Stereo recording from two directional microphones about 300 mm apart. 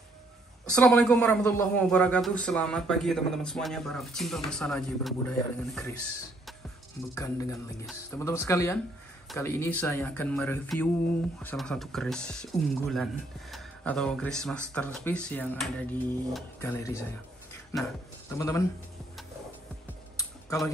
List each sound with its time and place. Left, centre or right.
0.7 s a man's voice: centre
7.2 s a man's voice: centre
18.3 s speech: centre
20.2 s a sound: centre